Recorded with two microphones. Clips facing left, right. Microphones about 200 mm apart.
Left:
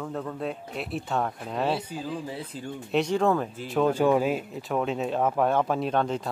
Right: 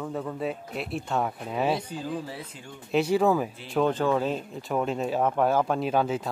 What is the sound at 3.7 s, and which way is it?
Mantra, centre (ahead or behind).